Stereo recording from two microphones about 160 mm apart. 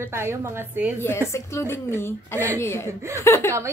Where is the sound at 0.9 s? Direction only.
15° left (ahead or behind).